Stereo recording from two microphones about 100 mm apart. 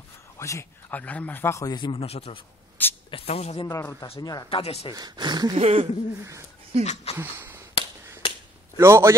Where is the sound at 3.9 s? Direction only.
70° left (ahead or behind).